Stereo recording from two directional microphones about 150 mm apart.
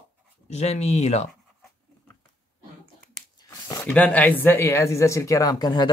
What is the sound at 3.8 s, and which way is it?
Speech, 10° left (ahead or behind).